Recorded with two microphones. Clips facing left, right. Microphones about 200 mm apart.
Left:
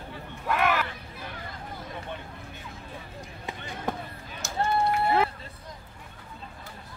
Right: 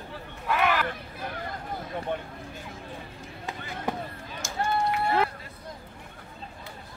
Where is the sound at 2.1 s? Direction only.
50° right (ahead or behind).